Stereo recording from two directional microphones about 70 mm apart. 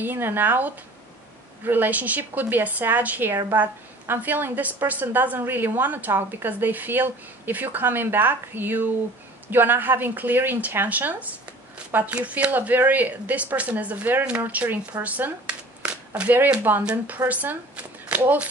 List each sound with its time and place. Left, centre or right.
0.0 s a woman's voice: right